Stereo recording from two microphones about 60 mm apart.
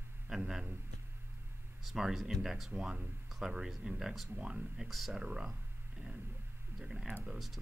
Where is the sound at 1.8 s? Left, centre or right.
Centre.